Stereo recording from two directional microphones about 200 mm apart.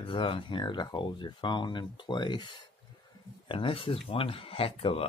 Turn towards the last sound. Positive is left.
turn(degrees=30)  # may be behind; listen again after turning